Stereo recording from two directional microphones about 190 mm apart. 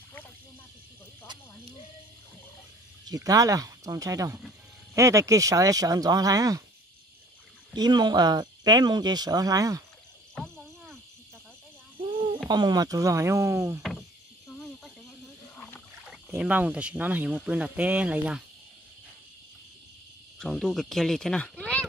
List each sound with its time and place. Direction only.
3.1 s speech: 20° right (ahead or behind)
7.7 s speech: 20° right (ahead or behind)
10.3 s cricket: 5° left (ahead or behind)
12.0 s a sound: 25° right (ahead or behind)
12.4 s speech: 20° right (ahead or behind)
15.5 s rowboat: 5° left (ahead or behind)
16.3 s speech: 10° right (ahead or behind)
20.3 s speech: 5° left (ahead or behind)